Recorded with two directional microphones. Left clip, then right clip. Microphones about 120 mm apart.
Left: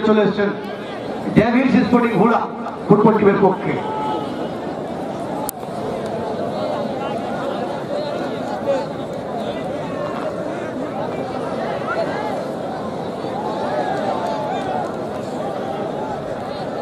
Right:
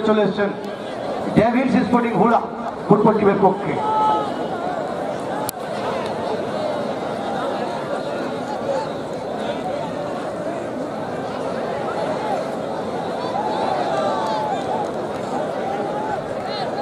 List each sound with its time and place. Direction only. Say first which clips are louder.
0.0 s a man's voice: left 2 dB; 5° left (ahead or behind)